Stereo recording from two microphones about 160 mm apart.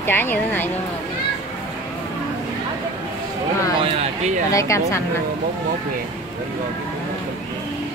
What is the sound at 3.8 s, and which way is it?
Speech, 45° right (ahead or behind).